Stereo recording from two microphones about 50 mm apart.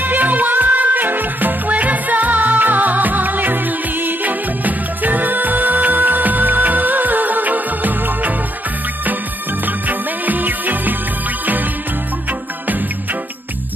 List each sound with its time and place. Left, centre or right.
0.0 s music: right
9.7 s music: right